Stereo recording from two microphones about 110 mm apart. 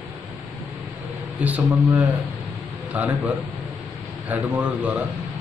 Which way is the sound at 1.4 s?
15° right (ahead or behind).